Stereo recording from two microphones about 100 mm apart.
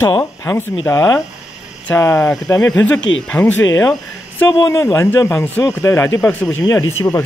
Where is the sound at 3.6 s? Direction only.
30° left (ahead or behind).